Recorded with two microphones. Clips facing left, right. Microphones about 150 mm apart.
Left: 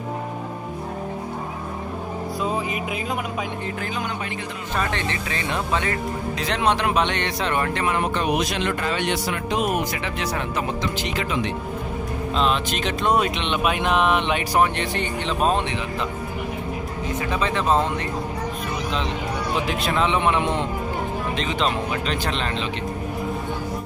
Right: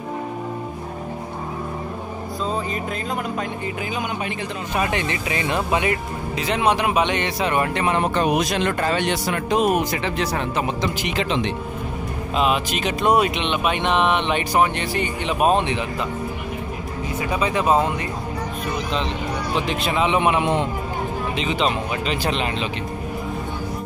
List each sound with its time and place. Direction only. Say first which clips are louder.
2.4 s speech: right 1 dB; 10° left (ahead or behind)
4.7 s speech: right 2 dB; 15° right (ahead or behind)
6.3 s speech: right 3 dB; 5° right (ahead or behind); by 8.0 s 20° right (ahead or behind)
8.1 s speech: right 3 dB; 45° right (ahead or behind); by 11.5 s 25° right (ahead or behind)
12.4 s speech: right 2 dB; 5° right (ahead or behind)
17.2 s speech: right 3 dB; 10° right (ahead or behind)
19.6 s speech: right 1 dB; centre (ahead or behind)
20.1 s speech: right 2 dB; 10° right (ahead or behind)